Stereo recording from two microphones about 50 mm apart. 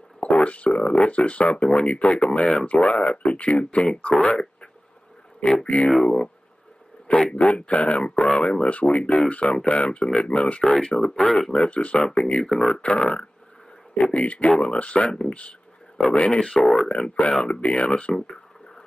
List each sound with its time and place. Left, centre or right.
0.2 s speech: left
5.5 s speech: left
7.2 s speech: centre
7.4 s speech: left
11.6 s speech: left
16.6 s speech: centre
17.1 s speech: left